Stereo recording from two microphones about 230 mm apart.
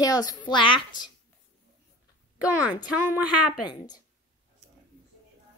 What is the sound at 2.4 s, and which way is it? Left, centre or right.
Speech, centre.